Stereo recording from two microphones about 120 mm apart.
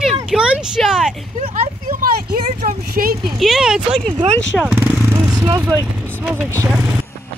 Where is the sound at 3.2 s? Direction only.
Centre (ahead or behind).